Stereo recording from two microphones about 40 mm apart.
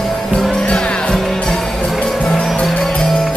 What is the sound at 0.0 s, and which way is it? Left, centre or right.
Music, centre.